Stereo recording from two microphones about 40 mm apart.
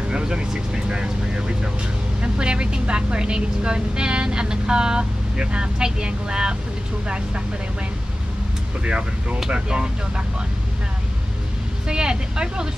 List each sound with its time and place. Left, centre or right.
0.1 s a woman's voice: right
8.8 s a woman's voice: right
11.9 s a woman's voice: right